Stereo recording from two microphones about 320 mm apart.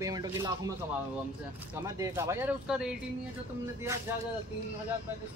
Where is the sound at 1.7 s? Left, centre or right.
Centre.